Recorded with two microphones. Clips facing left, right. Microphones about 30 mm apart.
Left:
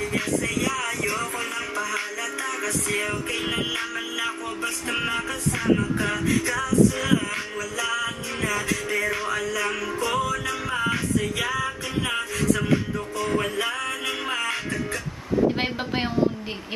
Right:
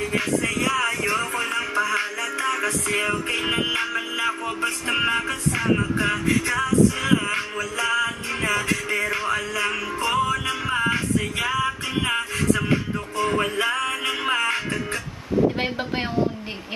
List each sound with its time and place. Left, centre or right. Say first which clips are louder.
0.7 s music: right 4 dB; right
6.2 s music: right 2 dB; right
13.3 s music: right 2 dB; right